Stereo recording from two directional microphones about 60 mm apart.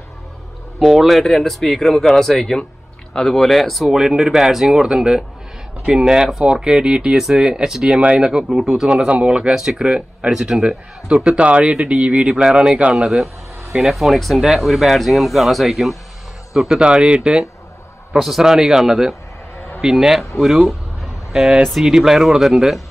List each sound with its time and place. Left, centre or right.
0.7 s speech: centre
1.0 s speech: centre